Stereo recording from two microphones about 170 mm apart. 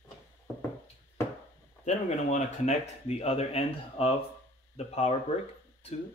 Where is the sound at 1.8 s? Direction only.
45° left (ahead or behind).